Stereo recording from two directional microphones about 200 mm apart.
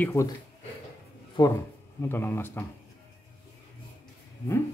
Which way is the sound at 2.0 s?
10° left (ahead or behind).